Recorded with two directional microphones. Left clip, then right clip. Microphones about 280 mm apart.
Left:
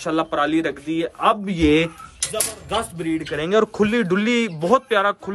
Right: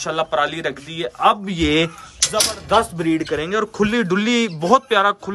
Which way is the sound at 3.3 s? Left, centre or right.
Centre.